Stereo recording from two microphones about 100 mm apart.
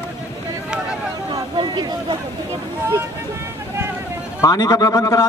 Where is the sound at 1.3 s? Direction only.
50° right (ahead or behind).